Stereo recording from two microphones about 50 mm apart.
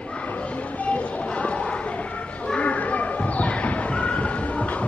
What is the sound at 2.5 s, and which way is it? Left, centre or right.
Basketball bounce, left.